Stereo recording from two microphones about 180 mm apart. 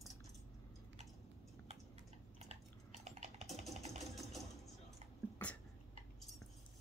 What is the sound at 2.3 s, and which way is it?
Chewing, 40° right (ahead or behind).